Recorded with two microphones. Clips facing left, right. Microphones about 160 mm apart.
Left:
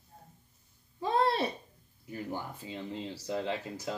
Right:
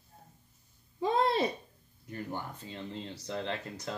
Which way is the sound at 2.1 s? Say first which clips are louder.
Left 1 dB; 10° left (ahead or behind).